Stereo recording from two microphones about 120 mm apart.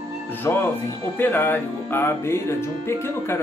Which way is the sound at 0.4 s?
20° left (ahead or behind).